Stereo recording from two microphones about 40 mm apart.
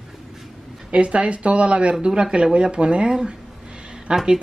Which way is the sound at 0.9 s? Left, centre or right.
Right.